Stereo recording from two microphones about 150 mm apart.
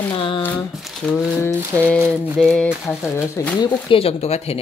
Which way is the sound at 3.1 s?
15° left (ahead or behind).